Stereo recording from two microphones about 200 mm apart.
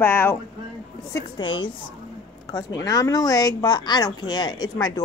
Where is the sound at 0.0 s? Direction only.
10° left (ahead or behind).